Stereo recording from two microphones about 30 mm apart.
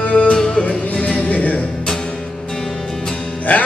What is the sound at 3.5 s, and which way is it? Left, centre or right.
Music, left.